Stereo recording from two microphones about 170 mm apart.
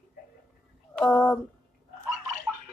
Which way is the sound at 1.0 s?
5° left (ahead or behind).